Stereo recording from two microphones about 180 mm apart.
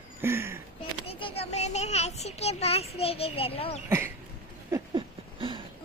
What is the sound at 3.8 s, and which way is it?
Speech, 15° right (ahead or behind).